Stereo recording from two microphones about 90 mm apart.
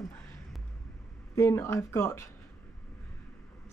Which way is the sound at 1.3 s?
35° left (ahead or behind).